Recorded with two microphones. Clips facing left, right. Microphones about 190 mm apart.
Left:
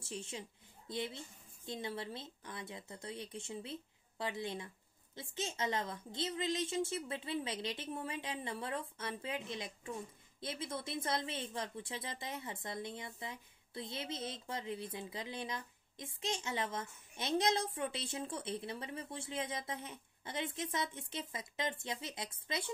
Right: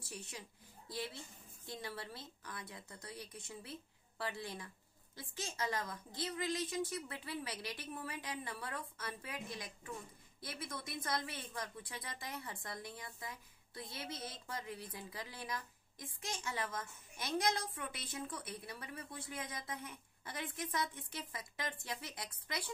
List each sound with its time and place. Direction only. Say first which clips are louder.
0.0 s a woman's voice: left 5 dB; 25° left (ahead or behind)